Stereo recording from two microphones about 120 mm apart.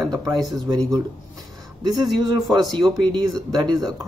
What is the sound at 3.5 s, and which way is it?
Speech, 35° right (ahead or behind).